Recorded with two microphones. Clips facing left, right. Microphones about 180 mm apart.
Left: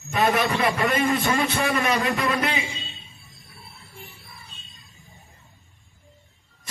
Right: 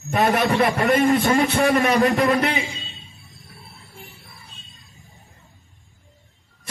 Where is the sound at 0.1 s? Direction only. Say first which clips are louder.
Right 3 dB; 50° right (ahead or behind).